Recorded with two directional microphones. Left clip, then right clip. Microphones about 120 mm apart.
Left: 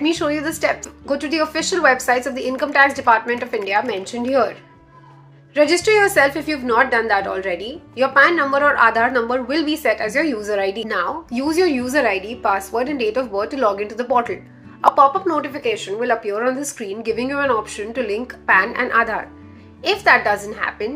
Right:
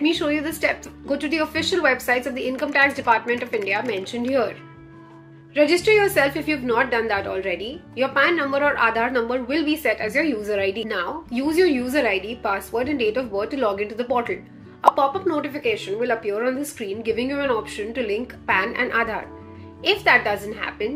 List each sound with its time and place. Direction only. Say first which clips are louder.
0.0 s a woman's voice: left 2 dB; 20° right (ahead or behind)